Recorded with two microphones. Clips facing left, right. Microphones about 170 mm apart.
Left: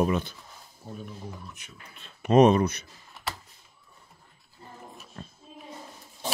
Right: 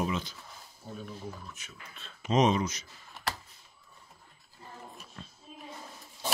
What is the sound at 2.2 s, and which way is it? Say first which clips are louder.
Speech: left 7 dB; 55° left (ahead or behind).